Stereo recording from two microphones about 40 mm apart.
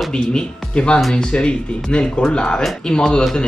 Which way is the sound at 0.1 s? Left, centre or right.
Left.